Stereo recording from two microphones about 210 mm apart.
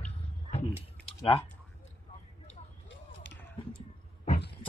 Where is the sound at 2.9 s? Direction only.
60° left (ahead or behind).